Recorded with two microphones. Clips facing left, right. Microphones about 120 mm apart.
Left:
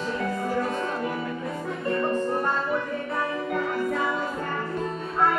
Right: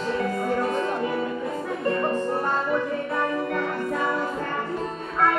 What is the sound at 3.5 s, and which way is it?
Music, 10° left (ahead or behind).